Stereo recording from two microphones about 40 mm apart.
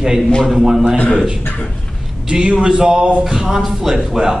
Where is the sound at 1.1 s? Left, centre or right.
Centre.